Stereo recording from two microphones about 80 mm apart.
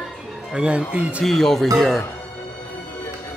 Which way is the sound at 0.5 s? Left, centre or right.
Centre.